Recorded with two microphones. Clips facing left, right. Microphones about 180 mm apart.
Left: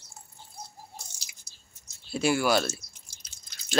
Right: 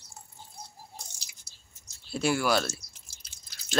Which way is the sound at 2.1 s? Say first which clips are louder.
Left 2 dB; centre (ahead or behind).